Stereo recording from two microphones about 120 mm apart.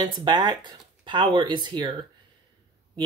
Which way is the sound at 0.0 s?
35° right (ahead or behind).